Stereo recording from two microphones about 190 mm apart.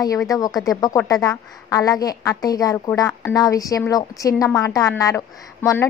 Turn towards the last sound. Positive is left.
turn(degrees=15)  # may be behind; listen again after turning